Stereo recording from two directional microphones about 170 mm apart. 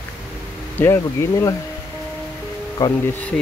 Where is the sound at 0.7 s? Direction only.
15° left (ahead or behind).